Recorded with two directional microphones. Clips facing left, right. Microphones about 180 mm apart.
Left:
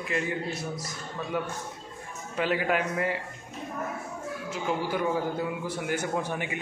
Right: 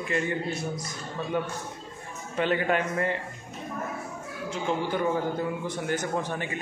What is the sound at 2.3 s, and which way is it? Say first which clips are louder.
Speech: right 1 dB; 5° left (ahead or behind).